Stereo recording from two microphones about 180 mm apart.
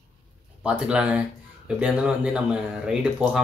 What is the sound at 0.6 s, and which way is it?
Speech, 5° right (ahead or behind).